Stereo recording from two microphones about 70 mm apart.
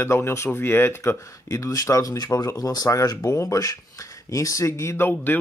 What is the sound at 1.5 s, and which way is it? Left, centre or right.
Speech, left.